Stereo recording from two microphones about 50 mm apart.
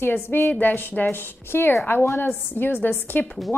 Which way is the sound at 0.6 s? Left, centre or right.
Left.